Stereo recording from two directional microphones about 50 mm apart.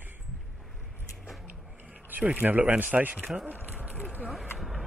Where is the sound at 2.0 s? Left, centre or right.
Right.